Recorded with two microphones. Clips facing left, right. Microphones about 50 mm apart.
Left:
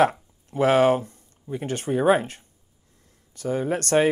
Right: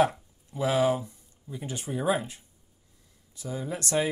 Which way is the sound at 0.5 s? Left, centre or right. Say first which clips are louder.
Left 7 dB; left.